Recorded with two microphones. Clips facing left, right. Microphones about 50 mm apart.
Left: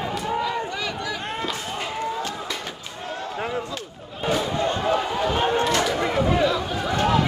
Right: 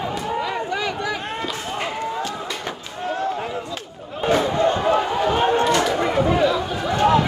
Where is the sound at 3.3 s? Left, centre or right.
Centre.